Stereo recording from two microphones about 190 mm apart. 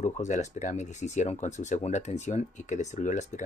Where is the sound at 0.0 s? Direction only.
40° left (ahead or behind).